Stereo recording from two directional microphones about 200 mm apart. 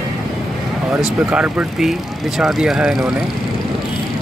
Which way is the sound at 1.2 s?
5° right (ahead or behind).